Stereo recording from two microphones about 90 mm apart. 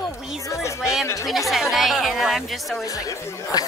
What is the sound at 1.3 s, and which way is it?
Speech, centre (ahead or behind).